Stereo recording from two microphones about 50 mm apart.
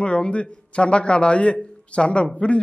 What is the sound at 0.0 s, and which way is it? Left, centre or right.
Speech, left.